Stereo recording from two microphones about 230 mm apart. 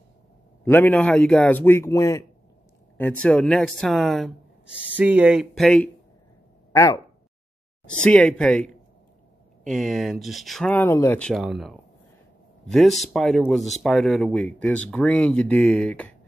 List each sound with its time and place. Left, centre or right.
0.7 s a man's voice: centre
6.7 s speech: centre